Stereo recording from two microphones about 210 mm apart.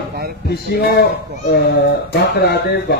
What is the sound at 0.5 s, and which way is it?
Speech, 50° left (ahead or behind).